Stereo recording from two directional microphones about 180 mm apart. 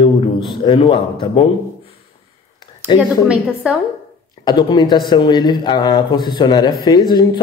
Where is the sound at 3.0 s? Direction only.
5° right (ahead or behind).